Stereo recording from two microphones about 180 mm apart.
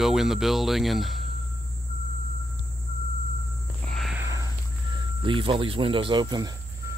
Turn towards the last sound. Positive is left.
turn(degrees=-20)  # may be behind; listen again after turning